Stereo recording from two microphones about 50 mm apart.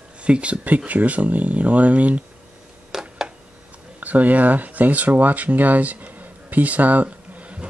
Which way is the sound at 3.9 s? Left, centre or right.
Right.